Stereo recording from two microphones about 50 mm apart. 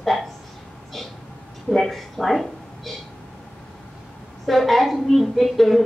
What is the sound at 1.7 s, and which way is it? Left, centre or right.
Speech, centre.